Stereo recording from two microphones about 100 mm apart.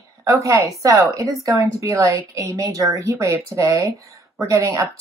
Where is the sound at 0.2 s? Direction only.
30° right (ahead or behind).